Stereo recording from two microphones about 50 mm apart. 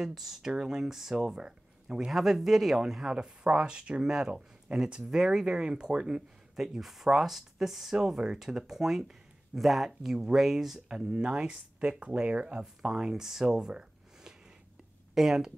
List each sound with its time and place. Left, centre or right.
0.0 s speech: centre
3.1 s speech: centre
5.1 s speech: centre
6.6 s speech: centre